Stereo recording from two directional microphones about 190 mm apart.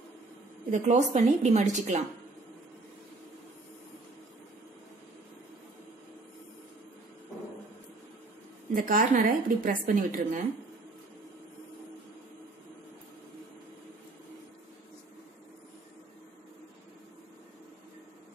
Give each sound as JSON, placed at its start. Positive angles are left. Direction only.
{"t": 0.7, "sound": "a woman's voice", "side_deg": -40}
{"t": 8.7, "sound": "a woman's voice", "side_deg": -45}